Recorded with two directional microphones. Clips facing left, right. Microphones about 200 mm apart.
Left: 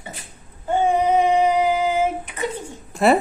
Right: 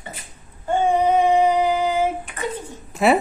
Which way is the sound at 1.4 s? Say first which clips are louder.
Even; 15° left (ahead or behind).